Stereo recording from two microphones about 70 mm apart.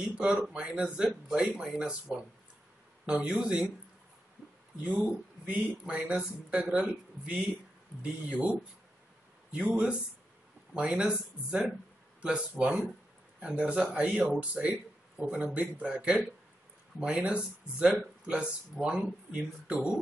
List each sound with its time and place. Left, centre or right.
0.1 s speech: centre
5.5 s speech: centre